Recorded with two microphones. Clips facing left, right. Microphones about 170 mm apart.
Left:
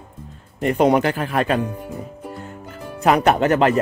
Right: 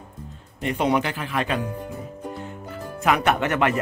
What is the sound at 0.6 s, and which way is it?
Speech, 45° left (ahead or behind).